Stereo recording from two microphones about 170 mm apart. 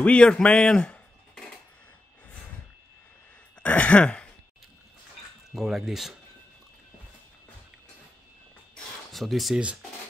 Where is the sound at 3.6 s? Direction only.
10° left (ahead or behind).